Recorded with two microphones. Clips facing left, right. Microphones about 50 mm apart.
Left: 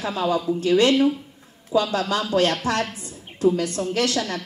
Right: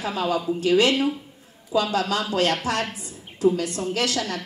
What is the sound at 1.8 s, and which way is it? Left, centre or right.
Speech, right.